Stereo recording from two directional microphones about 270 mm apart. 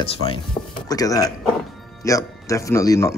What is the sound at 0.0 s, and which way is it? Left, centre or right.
Speech, left.